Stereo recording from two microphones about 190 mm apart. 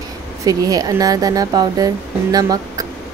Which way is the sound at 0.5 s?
20° right (ahead or behind).